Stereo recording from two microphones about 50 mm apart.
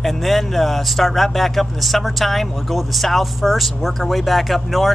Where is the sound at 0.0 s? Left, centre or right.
Centre.